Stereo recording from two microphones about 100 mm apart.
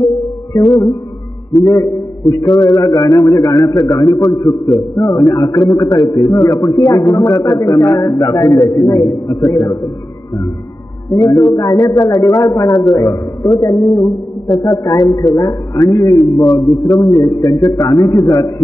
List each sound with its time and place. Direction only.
0.5 s a man's voice: 30° left (ahead or behind)
11.1 s a man's voice: 35° left (ahead or behind)